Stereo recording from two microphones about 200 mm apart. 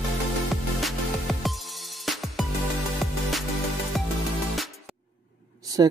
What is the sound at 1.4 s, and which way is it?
Music, centre (ahead or behind).